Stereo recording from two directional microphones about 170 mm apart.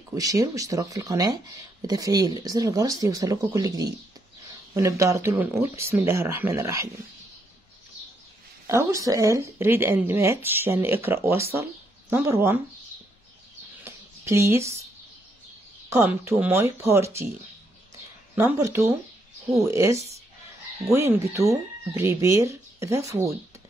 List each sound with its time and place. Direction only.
0.1 s speech: 20° right (ahead or behind)
8.6 s speech: 15° right (ahead or behind)
13.8 s a sound: 15° right (ahead or behind)
15.9 s speech: 15° right (ahead or behind)
18.3 s speech: 15° right (ahead or behind)